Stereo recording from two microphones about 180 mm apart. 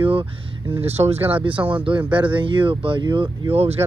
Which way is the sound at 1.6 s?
15° right (ahead or behind).